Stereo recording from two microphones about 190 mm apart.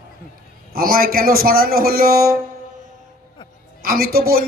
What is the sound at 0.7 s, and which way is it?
Speech, 50° right (ahead or behind).